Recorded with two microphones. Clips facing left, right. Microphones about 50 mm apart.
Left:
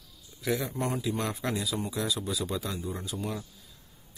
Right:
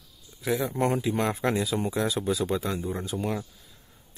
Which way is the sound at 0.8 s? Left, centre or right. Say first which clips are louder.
Right 5 dB; right.